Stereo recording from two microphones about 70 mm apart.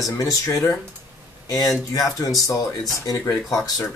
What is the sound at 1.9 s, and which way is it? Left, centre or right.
Speech, left.